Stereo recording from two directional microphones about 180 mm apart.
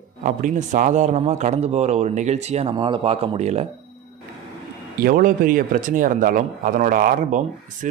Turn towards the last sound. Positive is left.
turn(degrees=-50)  # may be behind; listen again after turning